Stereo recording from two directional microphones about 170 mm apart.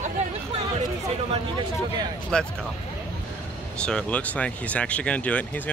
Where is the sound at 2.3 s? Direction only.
5° left (ahead or behind).